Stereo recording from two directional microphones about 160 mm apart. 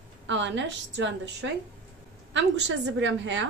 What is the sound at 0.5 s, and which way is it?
A woman's voice, 90° right.